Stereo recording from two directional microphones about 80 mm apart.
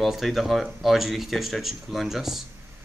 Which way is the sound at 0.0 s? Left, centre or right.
Centre.